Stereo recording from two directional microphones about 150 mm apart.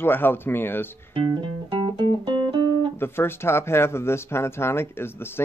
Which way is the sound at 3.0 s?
15° left (ahead or behind).